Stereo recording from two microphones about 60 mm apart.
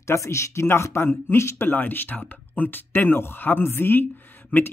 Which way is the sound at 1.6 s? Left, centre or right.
Left.